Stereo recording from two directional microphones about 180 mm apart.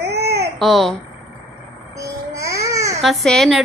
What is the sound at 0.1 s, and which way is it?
Baby cry, 65° right (ahead or behind).